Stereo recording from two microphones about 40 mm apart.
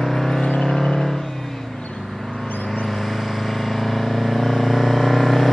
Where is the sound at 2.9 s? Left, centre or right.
Centre.